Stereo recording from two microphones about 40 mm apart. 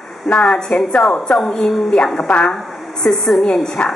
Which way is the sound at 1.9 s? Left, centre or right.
Left.